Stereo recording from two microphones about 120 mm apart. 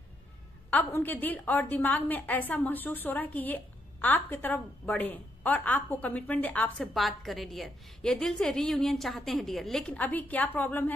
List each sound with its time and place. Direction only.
0.7 s a woman's voice: 15° left (ahead or behind)
6.9 s a woman's voice: centre (ahead or behind)
9.9 s a woman's voice: 15° left (ahead or behind)